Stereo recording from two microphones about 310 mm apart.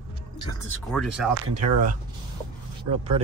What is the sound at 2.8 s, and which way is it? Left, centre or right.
Speech, centre.